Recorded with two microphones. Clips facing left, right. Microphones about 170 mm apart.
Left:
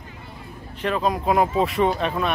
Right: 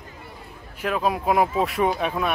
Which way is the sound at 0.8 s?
5° right (ahead or behind).